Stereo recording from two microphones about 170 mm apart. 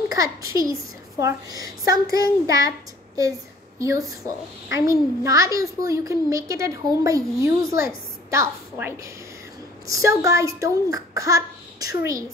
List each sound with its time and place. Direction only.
0.1 s a child's voice: 20° right (ahead or behind)
3.8 s a child's voice: 20° right (ahead or behind)